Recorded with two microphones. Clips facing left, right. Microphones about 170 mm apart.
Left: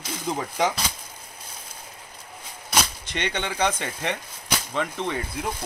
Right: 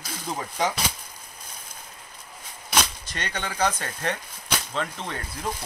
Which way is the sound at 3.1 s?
20° left (ahead or behind).